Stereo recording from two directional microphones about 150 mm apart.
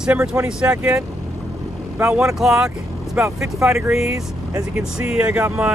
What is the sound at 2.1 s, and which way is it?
Speech, 5° right (ahead or behind).